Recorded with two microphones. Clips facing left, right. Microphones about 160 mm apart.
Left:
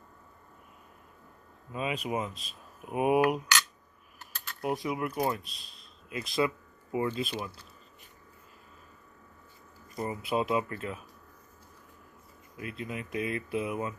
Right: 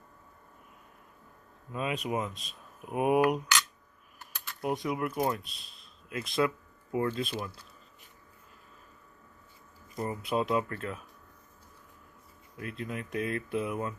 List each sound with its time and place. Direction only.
1.7 s speech: centre (ahead or behind)
9.9 s speech: 5° left (ahead or behind)
12.5 s speech: 5° left (ahead or behind)